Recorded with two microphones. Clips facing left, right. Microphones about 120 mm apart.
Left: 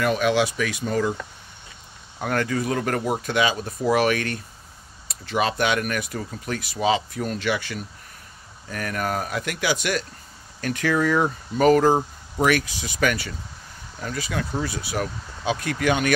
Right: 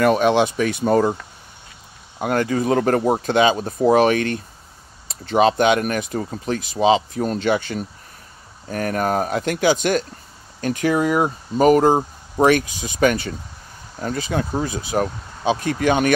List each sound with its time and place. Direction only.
0.0 s speech: 45° right (ahead or behind)
2.1 s speech: 25° right (ahead or behind)
6.6 s speech: 20° right (ahead or behind)
7.2 s speech: 35° right (ahead or behind)
10.6 s speech: 20° right (ahead or behind); by 14.6 s 35° right (ahead or behind)
14.6 s speech: 20° right (ahead or behind)